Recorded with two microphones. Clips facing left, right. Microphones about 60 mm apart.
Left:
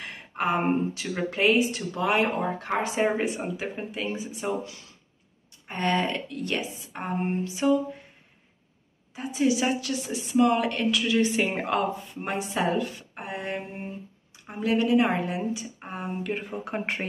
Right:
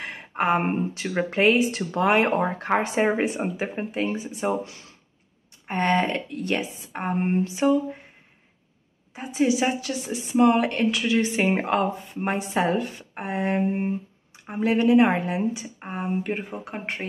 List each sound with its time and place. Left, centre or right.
0.0 s speech: right
1.7 s speech: right
4.2 s speech: right
9.1 s speech: right
16.5 s speech: centre